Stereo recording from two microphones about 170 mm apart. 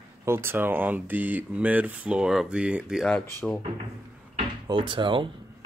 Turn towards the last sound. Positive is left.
turn(degrees=-30)  # may be behind; listen again after turning